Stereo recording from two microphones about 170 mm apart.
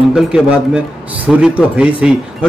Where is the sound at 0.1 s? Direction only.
5° right (ahead or behind).